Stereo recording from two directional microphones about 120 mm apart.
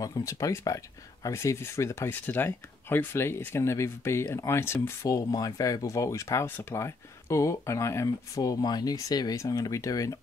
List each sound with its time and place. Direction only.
0.0 s speech: 25° left (ahead or behind)